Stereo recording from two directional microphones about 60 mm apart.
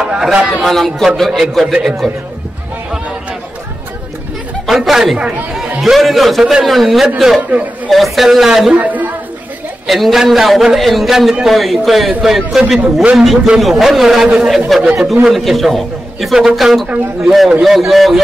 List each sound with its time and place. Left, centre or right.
0.0 s speech: centre
0.6 s a man's voice: centre
1.7 s speech: centre
4.6 s a man's voice: centre
5.1 s speech: right
5.5 s a man's voice: centre
8.7 s a sound: right
9.8 s a man's voice: centre
15.2 s a man's voice: centre